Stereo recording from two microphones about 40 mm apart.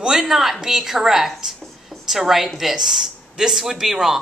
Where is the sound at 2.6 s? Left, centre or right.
Centre.